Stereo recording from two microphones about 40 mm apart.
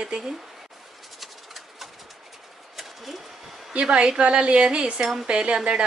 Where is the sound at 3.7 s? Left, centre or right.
Right.